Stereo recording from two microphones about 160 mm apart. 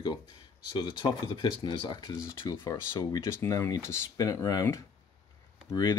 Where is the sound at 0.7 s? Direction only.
30° left (ahead or behind).